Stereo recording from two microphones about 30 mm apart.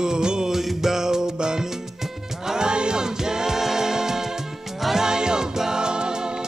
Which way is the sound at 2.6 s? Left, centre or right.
Right.